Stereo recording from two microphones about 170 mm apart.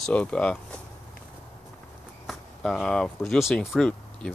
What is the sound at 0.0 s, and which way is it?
Speech, 5° left (ahead or behind).